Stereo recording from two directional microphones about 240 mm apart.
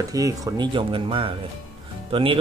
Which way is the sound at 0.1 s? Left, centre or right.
Centre.